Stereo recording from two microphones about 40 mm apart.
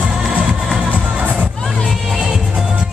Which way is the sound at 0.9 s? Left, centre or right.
Right.